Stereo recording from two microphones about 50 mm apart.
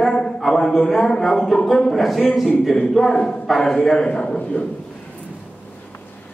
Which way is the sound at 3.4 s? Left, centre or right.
Centre.